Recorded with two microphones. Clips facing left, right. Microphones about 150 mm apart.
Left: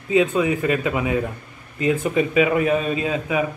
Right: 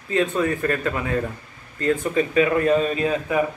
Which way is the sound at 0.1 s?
10° left (ahead or behind).